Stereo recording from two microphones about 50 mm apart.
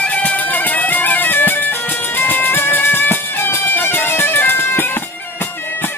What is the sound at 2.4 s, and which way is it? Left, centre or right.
Music, left.